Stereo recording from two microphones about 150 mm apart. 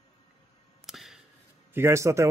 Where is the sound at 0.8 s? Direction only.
Centre (ahead or behind).